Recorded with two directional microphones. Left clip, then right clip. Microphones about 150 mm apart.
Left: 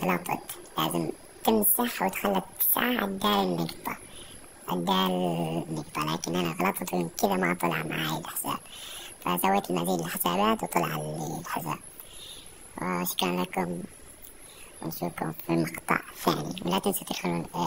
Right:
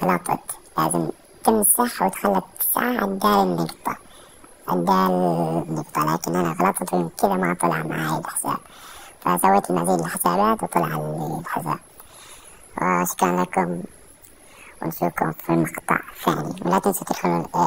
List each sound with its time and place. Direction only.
0.0 s a woman's voice: 10° right (ahead or behind)
6.7 s a woman's voice: 10° right (ahead or behind)
11.0 s speech: 30° right (ahead or behind)
11.4 s speech: 5° right (ahead or behind)
12.9 s a woman's voice: 10° right (ahead or behind)
14.8 s speech: 25° right (ahead or behind)
15.6 s speech: 5° left (ahead or behind)
16.4 s speech: 20° right (ahead or behind)